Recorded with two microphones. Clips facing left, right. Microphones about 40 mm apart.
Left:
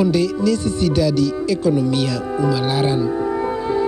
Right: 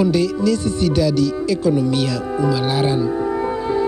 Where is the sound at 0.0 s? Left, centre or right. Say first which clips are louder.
Even; centre.